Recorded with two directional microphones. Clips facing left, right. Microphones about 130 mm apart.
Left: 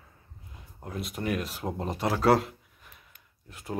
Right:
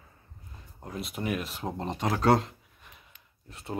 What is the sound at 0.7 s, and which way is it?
Speech, centre (ahead or behind).